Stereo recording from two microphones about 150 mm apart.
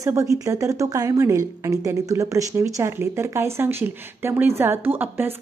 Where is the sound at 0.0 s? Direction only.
20° right (ahead or behind).